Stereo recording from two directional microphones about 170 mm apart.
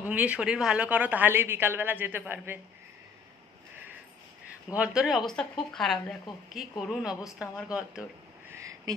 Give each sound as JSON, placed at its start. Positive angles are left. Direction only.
{"t": 0.0, "sound": "a woman's voice", "side_deg": -10}
{"t": 4.6, "sound": "speech", "side_deg": -5}
{"t": 8.5, "sound": "a sound", "side_deg": -20}